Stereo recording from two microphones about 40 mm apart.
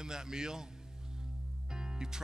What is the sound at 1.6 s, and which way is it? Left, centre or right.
Music, centre.